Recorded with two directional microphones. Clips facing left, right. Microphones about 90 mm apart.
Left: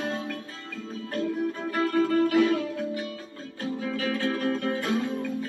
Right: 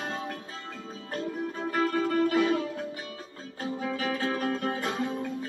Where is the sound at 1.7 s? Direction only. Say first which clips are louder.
Left 2 dB; 25° right (ahead or behind).